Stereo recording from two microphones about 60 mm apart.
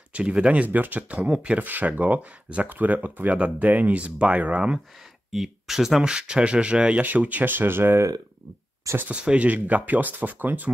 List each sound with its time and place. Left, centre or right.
0.1 s speech: centre
5.3 s speech: centre
7.0 s speech: right
9.1 s speech: centre